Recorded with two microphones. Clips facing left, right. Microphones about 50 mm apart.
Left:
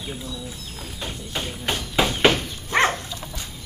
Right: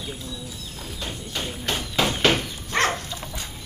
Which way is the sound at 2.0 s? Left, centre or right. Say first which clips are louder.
Left 2 dB; centre.